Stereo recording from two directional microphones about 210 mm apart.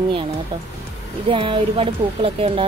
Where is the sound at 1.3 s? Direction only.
25° right (ahead or behind).